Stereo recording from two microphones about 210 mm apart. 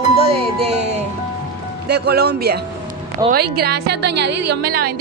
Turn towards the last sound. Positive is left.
turn(degrees=-45)  # may be behind; listen again after turning